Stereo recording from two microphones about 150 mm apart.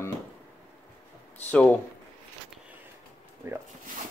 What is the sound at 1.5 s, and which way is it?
Speech, 10° left (ahead or behind).